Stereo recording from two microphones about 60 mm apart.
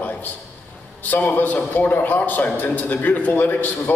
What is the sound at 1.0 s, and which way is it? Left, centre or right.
A man's voice, left.